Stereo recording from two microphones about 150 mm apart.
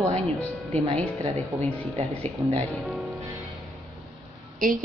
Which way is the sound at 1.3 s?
45° right (ahead or behind).